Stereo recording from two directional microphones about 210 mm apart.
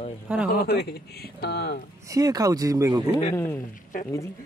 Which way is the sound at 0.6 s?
50° left (ahead or behind).